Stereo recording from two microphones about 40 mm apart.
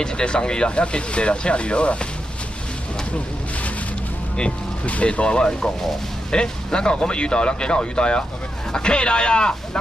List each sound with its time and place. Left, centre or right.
0.0 s speech: left
4.8 s speech: left